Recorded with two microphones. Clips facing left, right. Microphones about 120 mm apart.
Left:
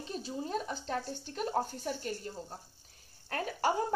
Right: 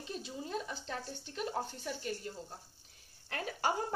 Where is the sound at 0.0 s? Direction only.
35° left (ahead or behind).